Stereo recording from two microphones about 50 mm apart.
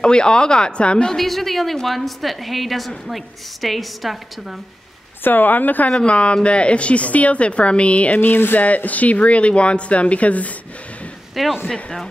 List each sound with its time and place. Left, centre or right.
0.0 s speech: centre
1.1 s a woman's voice: centre
5.2 s a woman's voice: left
5.9 s a woman's voice: left
8.2 s speech: left
8.5 s a woman's voice: left
11.6 s speech: centre